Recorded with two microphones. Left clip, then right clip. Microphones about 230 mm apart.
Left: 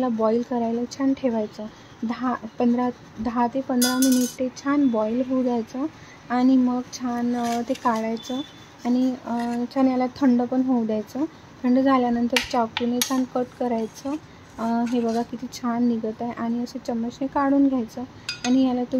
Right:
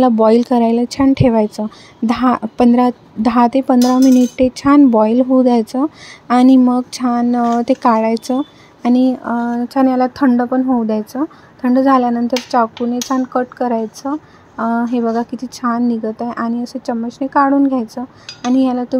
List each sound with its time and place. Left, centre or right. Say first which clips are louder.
0.0 s a woman's voice: right 11 dB; right